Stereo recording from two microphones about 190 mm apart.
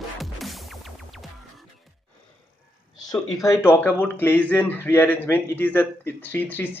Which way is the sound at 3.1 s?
15° left (ahead or behind).